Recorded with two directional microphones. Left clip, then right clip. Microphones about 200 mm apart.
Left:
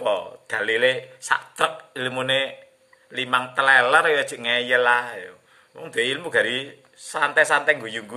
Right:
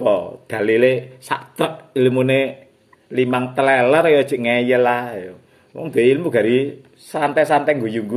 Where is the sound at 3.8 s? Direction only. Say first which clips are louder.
Right 5 dB; 10° left (ahead or behind).